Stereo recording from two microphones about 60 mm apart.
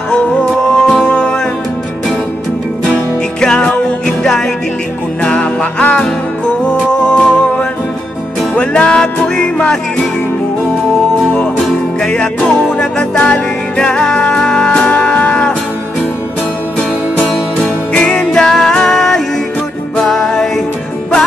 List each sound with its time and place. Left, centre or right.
0.1 s music: centre
2.9 s music: centre
11.6 s music: centre
17.9 s music: centre